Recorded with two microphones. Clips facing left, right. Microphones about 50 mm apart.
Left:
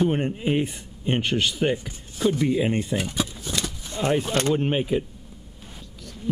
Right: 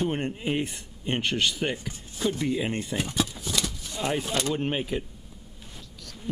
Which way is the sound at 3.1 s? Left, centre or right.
Centre.